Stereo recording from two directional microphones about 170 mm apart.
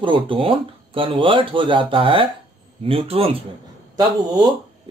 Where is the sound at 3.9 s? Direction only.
25° right (ahead or behind).